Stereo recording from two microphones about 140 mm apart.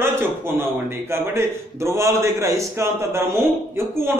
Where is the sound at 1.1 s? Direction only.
20° right (ahead or behind).